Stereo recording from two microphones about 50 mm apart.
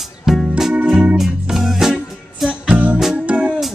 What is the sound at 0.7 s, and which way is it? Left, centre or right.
Music, centre.